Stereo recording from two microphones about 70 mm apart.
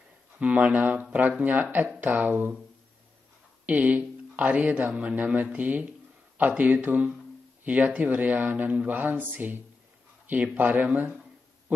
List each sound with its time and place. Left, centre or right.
0.4 s speech: centre
3.6 s speech: right